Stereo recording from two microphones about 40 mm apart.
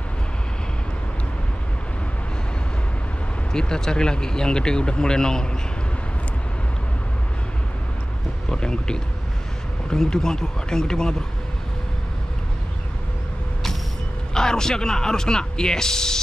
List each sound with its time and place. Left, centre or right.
3.5 s speech: centre
8.5 s speech: centre
14.3 s speech: centre